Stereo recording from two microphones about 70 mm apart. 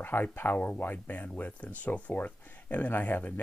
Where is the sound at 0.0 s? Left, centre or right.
Left.